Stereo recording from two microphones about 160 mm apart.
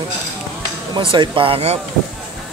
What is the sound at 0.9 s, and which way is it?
Speech, 30° right (ahead or behind).